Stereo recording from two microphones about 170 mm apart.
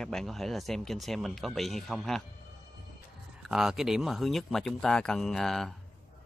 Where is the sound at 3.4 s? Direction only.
5° right (ahead or behind).